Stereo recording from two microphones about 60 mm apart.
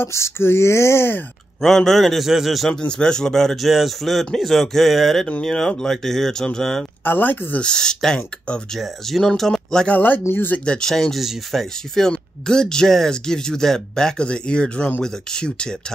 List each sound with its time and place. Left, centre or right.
0.0 s speech: left
1.6 s a man's voice: centre
7.1 s speech: left
7.6 s a man's voice: centre
9.8 s speech: left
10.6 s a man's voice: centre